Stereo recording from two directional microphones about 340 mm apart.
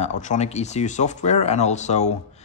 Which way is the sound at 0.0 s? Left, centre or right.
Left.